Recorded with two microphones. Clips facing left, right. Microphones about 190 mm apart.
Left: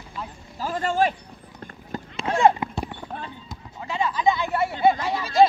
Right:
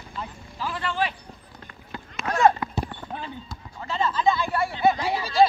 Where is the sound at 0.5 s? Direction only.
45° left (ahead or behind).